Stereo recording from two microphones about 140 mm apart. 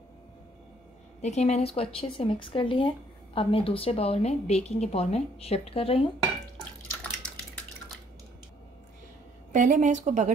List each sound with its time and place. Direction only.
1.2 s a woman's voice: 50° left (ahead or behind)
9.5 s a woman's voice: 65° right (ahead or behind)